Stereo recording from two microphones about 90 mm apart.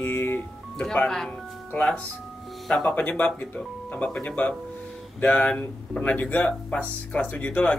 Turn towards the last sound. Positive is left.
turn(degrees=15)  # may be behind; listen again after turning